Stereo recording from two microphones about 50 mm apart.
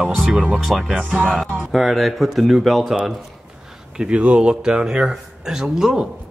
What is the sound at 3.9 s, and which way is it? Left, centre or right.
Speech, centre.